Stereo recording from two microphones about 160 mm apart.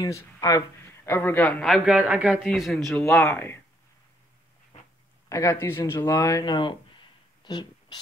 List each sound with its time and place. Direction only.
0.0 s a man's voice: 20° left (ahead or behind); by 3.2 s centre (ahead or behind)
3.2 s a man's voice: 15° left (ahead or behind)
5.3 s speech: 20° left (ahead or behind)
7.4 s a sound: 25° left (ahead or behind)